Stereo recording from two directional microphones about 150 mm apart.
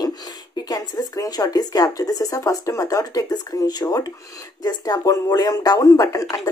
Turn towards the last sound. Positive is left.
turn(degrees=25)  # may be behind; listen again after turning